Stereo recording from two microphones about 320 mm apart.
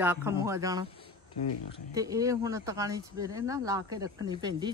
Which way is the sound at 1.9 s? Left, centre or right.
Centre.